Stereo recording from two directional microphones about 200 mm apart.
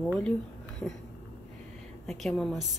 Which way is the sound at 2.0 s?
Centre (ahead or behind).